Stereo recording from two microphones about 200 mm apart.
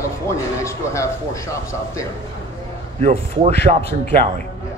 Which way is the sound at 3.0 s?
35° right (ahead or behind).